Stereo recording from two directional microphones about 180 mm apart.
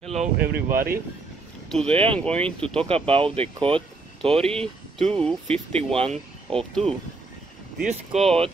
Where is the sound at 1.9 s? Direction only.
30° right (ahead or behind).